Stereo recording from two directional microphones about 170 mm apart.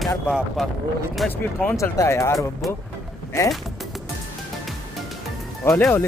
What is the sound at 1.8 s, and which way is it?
Speech, 15° left (ahead or behind).